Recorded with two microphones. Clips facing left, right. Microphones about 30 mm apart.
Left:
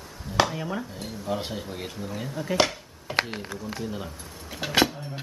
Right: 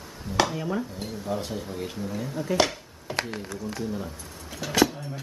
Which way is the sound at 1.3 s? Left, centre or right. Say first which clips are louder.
Left 1 dB; left.